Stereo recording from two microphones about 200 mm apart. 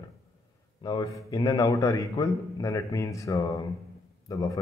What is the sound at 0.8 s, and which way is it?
A man's voice, 20° left (ahead or behind).